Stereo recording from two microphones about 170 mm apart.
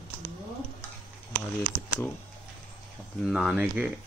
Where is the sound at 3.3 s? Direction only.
5° right (ahead or behind).